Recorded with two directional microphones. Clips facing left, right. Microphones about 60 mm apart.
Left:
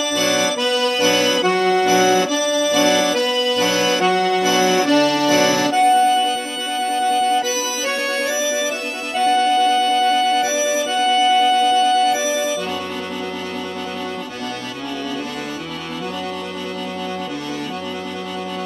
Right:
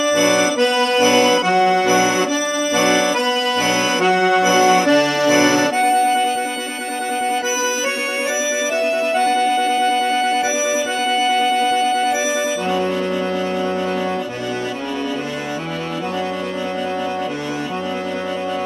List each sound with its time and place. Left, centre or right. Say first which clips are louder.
0.1 s accordion: right 3 dB; right
7.1 s music: left 2 dB; right
9.1 s music: left 4 dB; right